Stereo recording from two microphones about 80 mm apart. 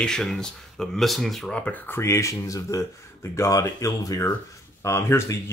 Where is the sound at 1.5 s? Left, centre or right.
Centre.